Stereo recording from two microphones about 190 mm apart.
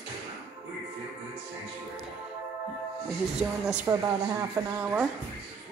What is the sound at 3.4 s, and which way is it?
Speech, 5° right (ahead or behind).